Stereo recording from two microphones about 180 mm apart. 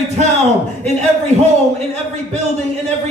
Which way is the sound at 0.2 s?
40° right (ahead or behind).